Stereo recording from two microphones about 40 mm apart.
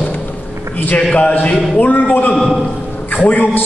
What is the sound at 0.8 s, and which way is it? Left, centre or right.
A man's voice, left.